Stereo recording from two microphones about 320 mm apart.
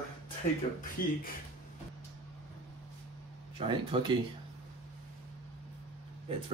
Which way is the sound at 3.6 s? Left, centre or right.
Centre.